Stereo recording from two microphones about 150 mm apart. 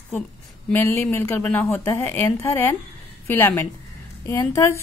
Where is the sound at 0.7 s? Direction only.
15° left (ahead or behind).